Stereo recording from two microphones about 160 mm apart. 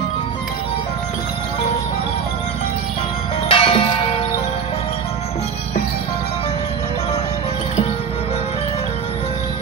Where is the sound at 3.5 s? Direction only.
35° left (ahead or behind).